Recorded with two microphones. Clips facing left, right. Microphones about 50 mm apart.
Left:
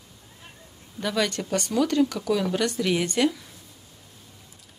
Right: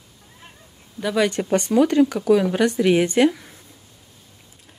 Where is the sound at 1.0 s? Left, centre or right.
Centre.